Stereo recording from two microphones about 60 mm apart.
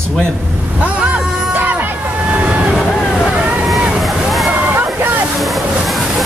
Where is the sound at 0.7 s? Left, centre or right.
Right.